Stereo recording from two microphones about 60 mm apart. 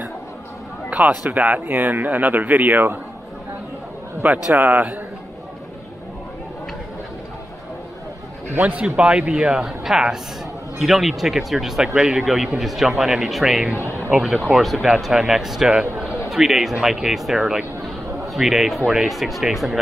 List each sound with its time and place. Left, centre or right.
0.8 s speech: right
4.2 s speech: right
8.5 s a man's voice: right
8.8 s speech: centre